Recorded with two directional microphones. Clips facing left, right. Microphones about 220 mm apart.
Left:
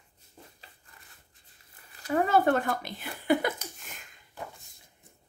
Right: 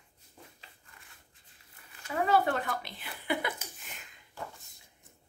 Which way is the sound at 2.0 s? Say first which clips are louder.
Left 3 dB; 45° left (ahead or behind).